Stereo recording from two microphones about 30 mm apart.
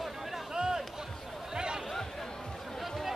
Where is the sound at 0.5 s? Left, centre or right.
Right.